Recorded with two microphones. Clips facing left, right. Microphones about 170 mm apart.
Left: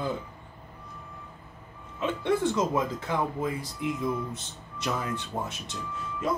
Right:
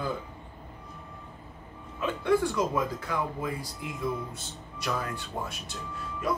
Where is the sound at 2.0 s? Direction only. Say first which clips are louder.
Even; 25° left (ahead or behind).